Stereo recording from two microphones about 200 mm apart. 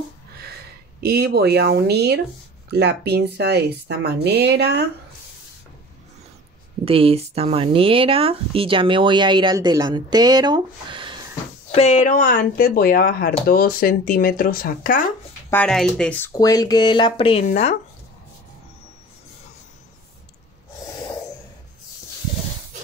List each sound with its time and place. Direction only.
1.0 s speech: 50° right (ahead or behind)
6.8 s speech: 30° right (ahead or behind)
11.7 s speech: 35° left (ahead or behind)
15.5 s speech: 5° left (ahead or behind)
16.3 s speech: 20° left (ahead or behind); by 17.7 s 35° left (ahead or behind)